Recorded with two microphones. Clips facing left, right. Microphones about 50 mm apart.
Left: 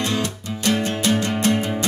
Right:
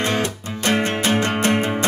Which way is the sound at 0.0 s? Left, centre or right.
Right.